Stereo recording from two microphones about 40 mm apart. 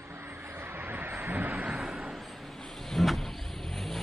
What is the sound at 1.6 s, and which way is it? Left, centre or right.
Vehicle, right.